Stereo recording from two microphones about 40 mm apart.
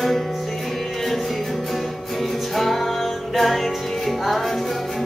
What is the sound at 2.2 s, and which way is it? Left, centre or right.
Music, centre.